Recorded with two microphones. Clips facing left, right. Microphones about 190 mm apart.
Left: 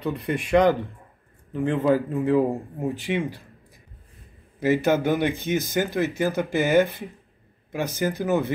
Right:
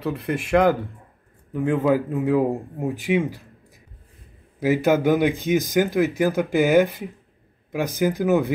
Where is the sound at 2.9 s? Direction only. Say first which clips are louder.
Right 7 dB; 15° right (ahead or behind).